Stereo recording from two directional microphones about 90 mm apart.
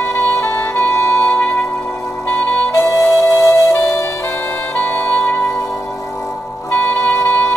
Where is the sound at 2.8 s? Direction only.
35° left (ahead or behind).